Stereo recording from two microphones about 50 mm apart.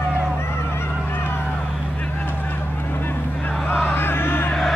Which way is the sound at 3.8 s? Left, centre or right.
Left.